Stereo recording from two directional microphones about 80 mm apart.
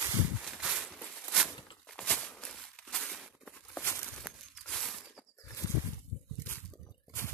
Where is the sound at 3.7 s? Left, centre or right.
Left.